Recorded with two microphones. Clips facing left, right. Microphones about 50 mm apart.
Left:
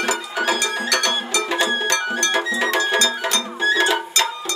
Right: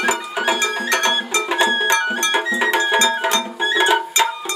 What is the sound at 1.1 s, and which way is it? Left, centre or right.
Music, centre.